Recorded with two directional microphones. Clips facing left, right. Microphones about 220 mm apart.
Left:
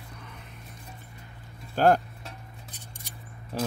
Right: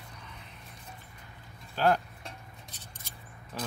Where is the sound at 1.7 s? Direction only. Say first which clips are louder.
Left 5 dB; 45° left (ahead or behind).